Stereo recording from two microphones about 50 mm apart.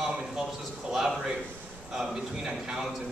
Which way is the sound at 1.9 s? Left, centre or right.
Centre.